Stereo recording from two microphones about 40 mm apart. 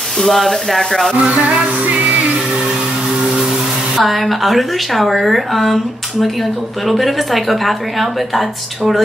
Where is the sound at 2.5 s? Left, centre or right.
Centre.